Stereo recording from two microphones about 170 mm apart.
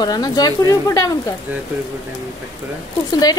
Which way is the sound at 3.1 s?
25° left (ahead or behind).